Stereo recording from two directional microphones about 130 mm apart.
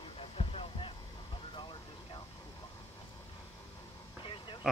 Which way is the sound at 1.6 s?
35° left (ahead or behind).